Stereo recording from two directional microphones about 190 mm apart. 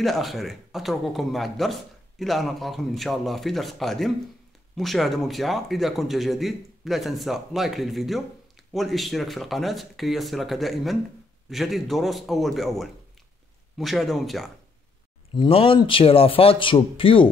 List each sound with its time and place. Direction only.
0.0 s speech: centre (ahead or behind)
15.3 s a man's voice: 30° left (ahead or behind)